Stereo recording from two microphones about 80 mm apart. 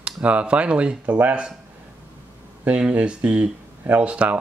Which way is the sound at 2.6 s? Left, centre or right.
Centre.